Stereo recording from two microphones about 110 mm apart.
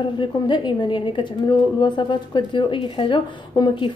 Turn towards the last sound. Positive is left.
turn(degrees=45)  # may be behind; listen again after turning